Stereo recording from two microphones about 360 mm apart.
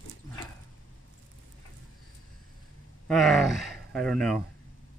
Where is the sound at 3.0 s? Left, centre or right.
Centre.